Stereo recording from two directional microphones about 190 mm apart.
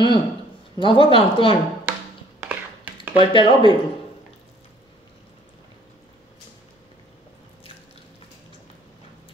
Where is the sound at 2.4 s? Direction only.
10° right (ahead or behind).